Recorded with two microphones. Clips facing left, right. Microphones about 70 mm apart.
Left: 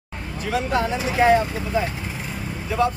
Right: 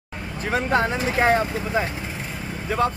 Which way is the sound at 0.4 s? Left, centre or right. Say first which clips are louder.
Right 1 dB; right.